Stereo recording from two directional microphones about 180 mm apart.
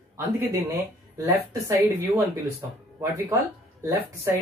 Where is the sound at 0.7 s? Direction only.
20° right (ahead or behind).